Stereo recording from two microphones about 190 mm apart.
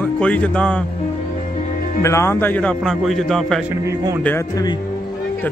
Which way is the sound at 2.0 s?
15° left (ahead or behind).